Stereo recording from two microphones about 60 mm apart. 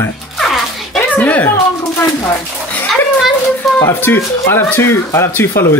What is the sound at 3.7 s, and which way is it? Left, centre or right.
Speech, left.